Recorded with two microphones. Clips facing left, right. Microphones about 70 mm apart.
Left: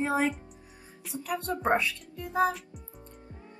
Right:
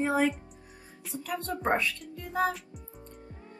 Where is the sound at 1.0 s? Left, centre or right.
Centre.